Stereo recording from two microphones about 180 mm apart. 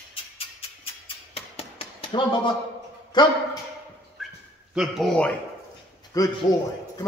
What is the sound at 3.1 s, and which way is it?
Speech, 25° left (ahead or behind).